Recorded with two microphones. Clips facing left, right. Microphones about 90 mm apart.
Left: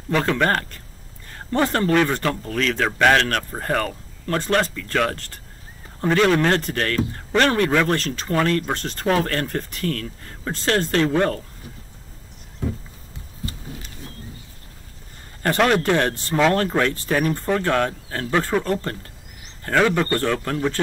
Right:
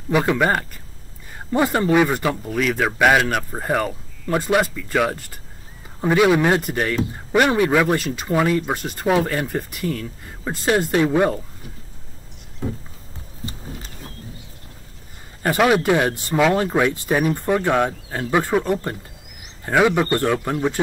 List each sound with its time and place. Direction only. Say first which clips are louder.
0.1 s speech: right 2 dB; 10° right (ahead or behind)
15.4 s speech: right 2 dB; 5° right (ahead or behind)